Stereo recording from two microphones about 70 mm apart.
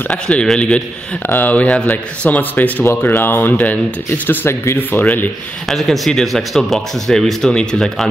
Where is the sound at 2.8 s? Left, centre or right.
Left.